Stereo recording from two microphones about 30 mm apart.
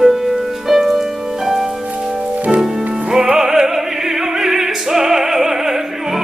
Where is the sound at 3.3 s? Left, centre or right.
Centre.